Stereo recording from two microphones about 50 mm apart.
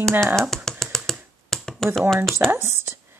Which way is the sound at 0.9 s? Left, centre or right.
Centre.